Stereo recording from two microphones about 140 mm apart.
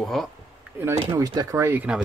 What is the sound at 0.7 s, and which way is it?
Speech, 20° right (ahead or behind).